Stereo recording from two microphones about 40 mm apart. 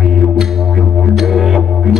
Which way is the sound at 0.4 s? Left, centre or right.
Centre.